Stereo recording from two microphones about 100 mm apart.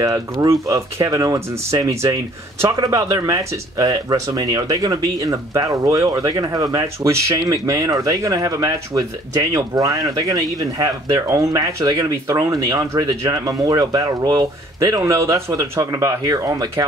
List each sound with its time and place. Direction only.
0.0 s speech: 35° right (ahead or behind)